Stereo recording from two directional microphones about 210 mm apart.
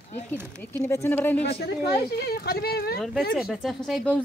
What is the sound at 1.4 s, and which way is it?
Speech, 50° left (ahead or behind).